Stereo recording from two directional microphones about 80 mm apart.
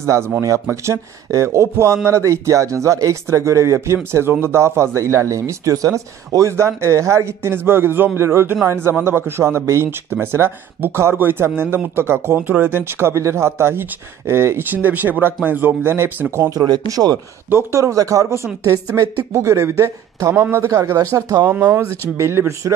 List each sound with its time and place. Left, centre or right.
0.0 s speech: right
16.5 s speech: right
17.5 s speech: right